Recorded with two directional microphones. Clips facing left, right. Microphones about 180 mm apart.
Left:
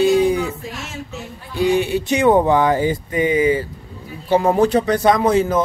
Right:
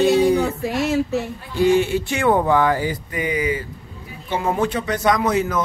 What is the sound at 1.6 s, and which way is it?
Speech, 15° left (ahead or behind).